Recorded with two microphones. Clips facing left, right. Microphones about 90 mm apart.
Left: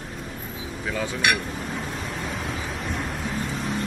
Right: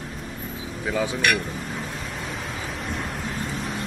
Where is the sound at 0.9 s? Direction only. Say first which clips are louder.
Right 4 dB; 10° right (ahead or behind).